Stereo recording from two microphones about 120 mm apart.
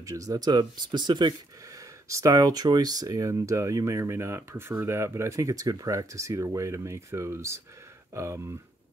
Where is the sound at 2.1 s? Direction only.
25° right (ahead or behind).